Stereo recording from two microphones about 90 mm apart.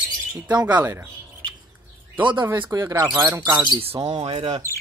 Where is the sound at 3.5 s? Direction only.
55° right (ahead or behind).